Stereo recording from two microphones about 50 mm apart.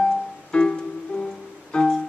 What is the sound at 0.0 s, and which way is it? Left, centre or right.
Music, centre.